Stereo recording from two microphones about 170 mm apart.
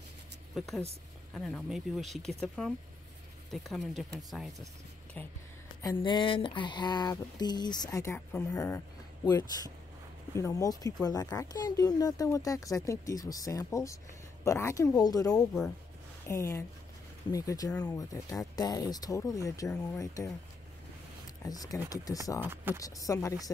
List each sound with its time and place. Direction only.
0.6 s speech: centre (ahead or behind)
5.8 s speech: 25° left (ahead or behind)
21.5 s speech: 20° left (ahead or behind)
22.4 s speech: 10° right (ahead or behind)
22.8 s speech: 20° left (ahead or behind)